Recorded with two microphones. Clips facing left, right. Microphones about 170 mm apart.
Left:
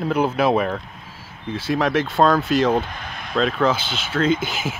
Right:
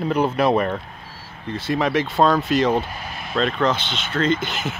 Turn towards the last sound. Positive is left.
turn(degrees=5)  # may be behind; listen again after turning